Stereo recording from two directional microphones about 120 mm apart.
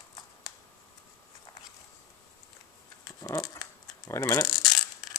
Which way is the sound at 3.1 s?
30° left (ahead or behind).